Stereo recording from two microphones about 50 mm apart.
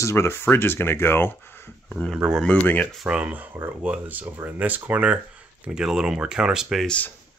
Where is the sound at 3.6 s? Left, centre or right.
Right.